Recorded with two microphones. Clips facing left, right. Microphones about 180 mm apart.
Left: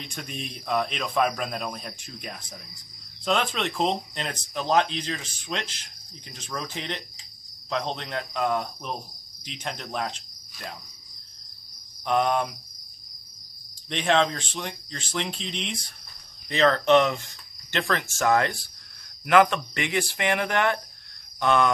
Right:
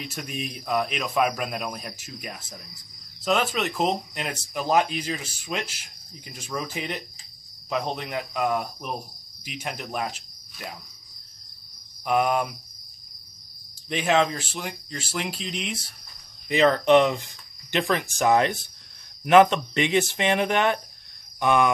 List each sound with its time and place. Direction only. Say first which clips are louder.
0.0 s speech: right 3 dB; 5° right (ahead or behind)
7.7 s cricket: right 1 dB; 10° right (ahead or behind)
12.0 s speech: right 1 dB; 10° right (ahead or behind)
13.8 s speech: right 1 dB; 5° right (ahead or behind)